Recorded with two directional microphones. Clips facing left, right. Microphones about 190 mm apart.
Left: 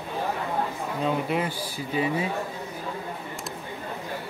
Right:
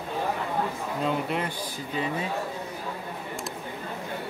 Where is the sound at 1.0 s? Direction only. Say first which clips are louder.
Left 2 dB; 5° left (ahead or behind).